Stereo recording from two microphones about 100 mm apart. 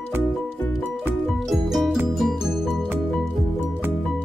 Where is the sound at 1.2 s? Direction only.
Centre (ahead or behind).